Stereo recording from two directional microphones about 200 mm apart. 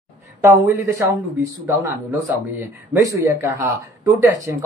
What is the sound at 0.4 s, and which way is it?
Speech, 15° right (ahead or behind).